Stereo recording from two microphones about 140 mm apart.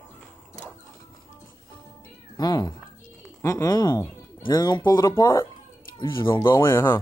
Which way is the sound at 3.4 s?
20° left (ahead or behind).